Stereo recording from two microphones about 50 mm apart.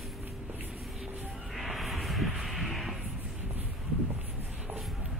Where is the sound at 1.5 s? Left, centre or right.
Centre.